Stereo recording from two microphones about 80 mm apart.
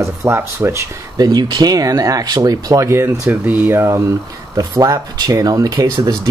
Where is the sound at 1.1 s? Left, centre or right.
Right.